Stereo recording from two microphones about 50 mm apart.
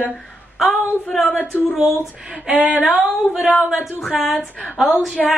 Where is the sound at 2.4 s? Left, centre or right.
Centre.